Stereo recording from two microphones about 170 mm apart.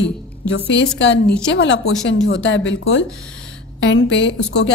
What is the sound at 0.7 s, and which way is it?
A woman's voice, 90° left.